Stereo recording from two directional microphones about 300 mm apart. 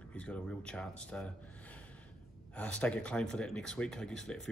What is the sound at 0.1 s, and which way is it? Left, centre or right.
Speech, centre.